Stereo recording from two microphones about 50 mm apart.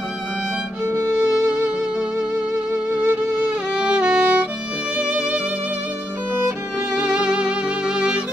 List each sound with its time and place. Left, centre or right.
0.8 s music: right
1.1 s music: right
2.7 s music: right
7.0 s music: right